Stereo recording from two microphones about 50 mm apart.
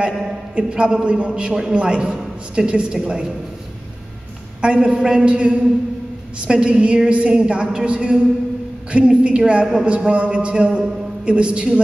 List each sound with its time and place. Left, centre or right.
0.6 s a man's voice: right
4.6 s a man's voice: right